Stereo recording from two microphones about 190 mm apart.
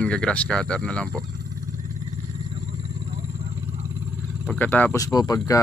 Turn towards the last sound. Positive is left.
turn(degrees=20)  # may be behind; listen again after turning